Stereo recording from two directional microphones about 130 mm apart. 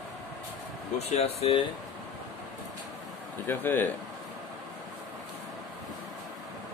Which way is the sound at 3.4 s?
15° left (ahead or behind).